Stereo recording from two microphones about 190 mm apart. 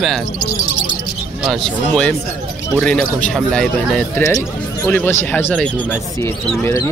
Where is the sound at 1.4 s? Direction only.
5° left (ahead or behind).